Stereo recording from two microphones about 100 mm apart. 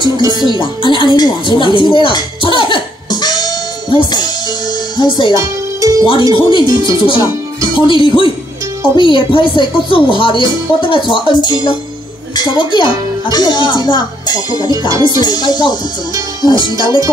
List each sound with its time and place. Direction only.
0.0 s speech: 45° right (ahead or behind)
0.5 s music: 55° left (ahead or behind)
4.9 s speech: 55° left (ahead or behind)
5.3 s music: 30° right (ahead or behind)
6.0 s speech: 55° left (ahead or behind)
12.4 s speech: 50° left (ahead or behind)